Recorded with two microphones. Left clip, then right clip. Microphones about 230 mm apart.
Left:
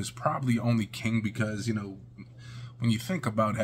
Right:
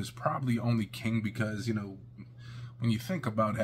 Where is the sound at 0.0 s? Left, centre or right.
Centre.